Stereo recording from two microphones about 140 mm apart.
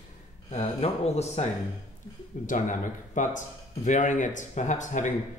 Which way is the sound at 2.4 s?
65° left (ahead or behind).